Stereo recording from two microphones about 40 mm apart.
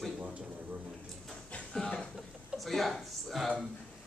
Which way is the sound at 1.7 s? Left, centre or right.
Centre.